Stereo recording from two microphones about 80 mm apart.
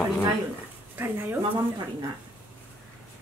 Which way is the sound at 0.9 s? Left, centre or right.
Right.